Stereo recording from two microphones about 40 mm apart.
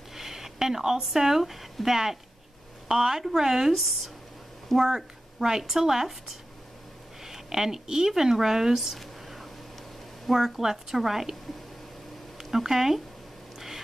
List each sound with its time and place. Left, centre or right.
0.1 s speech: centre
12.4 s speech: centre